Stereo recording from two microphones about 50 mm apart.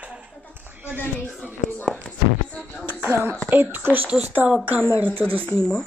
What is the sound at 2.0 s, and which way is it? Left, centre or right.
Speech, centre.